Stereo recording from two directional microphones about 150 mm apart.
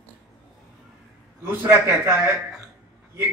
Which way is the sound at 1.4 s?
15° right (ahead or behind).